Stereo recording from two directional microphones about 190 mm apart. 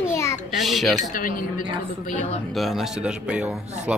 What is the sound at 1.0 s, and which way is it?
Speech, 45° left (ahead or behind).